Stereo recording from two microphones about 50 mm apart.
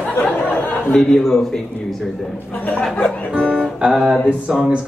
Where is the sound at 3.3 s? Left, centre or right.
Centre.